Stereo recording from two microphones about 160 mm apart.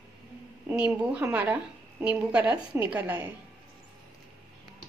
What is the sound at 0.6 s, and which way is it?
A woman's voice, 10° right (ahead or behind).